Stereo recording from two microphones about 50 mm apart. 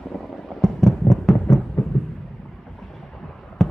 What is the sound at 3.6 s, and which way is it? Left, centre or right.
Fireworks, centre.